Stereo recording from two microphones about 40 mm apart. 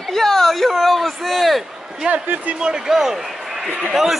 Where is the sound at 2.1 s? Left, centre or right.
Right.